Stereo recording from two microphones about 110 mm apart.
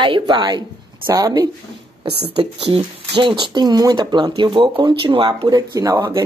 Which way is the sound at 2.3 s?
55° right (ahead or behind).